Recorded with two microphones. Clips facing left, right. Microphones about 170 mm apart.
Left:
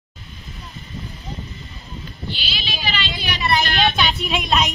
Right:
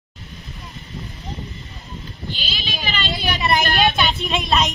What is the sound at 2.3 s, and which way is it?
Vehicle, 45° right (ahead or behind).